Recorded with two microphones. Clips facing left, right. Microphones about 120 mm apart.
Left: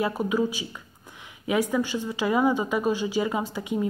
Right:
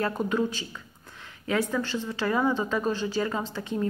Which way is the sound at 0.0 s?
5° left (ahead or behind).